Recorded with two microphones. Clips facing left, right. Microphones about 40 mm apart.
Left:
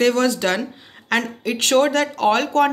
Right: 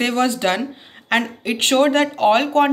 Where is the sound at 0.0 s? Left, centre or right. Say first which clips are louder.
Left 1 dB; right.